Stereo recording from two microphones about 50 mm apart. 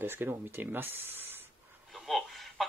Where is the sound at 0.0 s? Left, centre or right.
Right.